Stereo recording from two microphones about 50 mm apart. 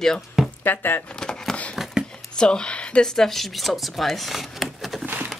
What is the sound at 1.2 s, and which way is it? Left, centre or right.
Speech, centre.